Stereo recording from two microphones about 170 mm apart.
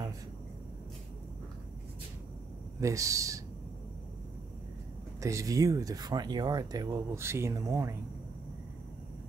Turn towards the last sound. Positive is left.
turn(degrees=-20)  # may be behind; listen again after turning